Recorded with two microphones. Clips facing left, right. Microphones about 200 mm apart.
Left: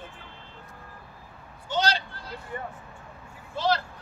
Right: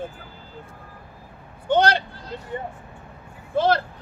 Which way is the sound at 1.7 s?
55° right (ahead or behind).